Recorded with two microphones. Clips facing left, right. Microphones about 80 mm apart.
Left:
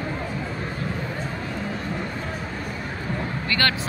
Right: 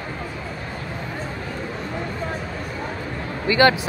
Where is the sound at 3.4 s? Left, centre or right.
Centre.